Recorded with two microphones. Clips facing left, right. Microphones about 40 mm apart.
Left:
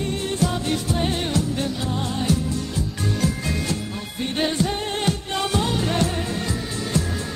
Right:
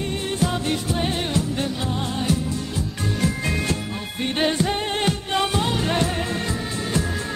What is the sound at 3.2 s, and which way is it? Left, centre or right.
Music, right.